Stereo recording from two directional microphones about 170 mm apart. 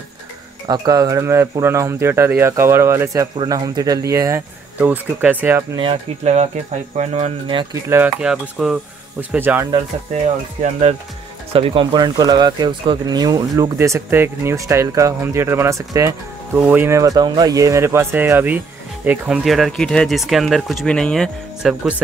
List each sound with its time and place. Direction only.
0.7 s speech: 20° right (ahead or behind)
5.8 s speech: 35° right (ahead or behind)
7.9 s speech: 5° right (ahead or behind)
10.6 s speech: 40° right (ahead or behind); by 21.7 s 5° left (ahead or behind)